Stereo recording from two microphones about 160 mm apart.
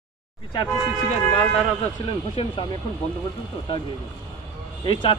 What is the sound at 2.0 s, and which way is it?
Speech, 40° left (ahead or behind).